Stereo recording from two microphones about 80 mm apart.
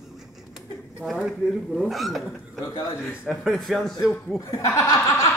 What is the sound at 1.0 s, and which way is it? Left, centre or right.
Speech, centre.